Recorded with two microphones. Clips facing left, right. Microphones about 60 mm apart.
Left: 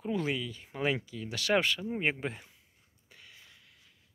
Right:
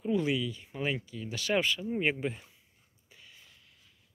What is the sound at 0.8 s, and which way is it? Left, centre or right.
Speech, left.